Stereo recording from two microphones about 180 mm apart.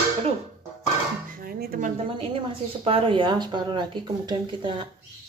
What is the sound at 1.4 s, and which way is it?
Speech, 55° right (ahead or behind).